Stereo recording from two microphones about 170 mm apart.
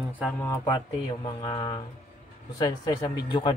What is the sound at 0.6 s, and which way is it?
A man's voice, 25° left (ahead or behind).